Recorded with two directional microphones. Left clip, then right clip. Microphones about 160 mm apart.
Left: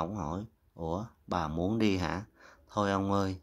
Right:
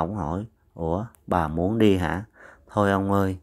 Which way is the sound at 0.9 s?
30° right (ahead or behind).